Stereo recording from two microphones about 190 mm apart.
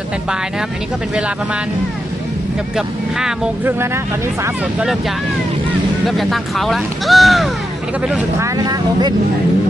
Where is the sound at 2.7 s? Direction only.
5° right (ahead or behind).